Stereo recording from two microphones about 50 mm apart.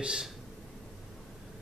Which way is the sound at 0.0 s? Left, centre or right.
Centre.